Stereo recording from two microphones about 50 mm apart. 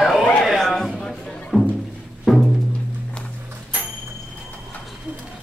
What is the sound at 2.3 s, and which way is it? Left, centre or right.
Music, centre.